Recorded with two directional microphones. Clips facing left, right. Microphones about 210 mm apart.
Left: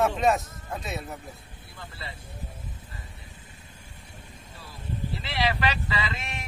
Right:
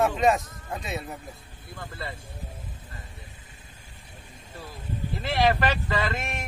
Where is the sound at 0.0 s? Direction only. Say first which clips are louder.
Right 1 dB; centre (ahead or behind).